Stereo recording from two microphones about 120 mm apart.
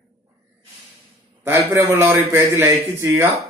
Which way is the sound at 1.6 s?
25° right (ahead or behind).